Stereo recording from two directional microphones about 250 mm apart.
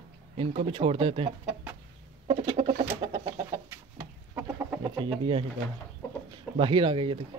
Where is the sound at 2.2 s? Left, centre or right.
Right.